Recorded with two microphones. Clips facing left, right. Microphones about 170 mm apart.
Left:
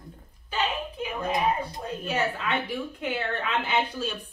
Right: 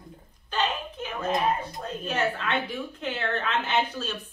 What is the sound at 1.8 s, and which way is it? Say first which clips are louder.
A woman's voice: right 1 dB; 10° left (ahead or behind).